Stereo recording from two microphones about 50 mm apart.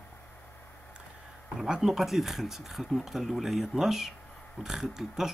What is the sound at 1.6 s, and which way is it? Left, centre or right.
Speech, centre.